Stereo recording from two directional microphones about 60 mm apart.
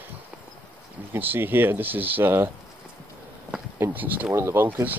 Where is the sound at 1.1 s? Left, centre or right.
Right.